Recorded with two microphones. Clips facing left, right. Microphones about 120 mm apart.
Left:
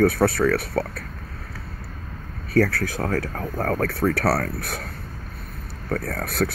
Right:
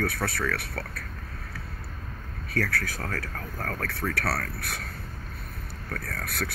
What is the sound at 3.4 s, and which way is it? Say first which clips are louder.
Speech: left 10 dB; 35° left (ahead or behind).